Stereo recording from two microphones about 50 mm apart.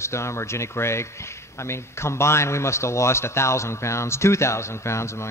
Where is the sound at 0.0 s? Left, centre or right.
Left.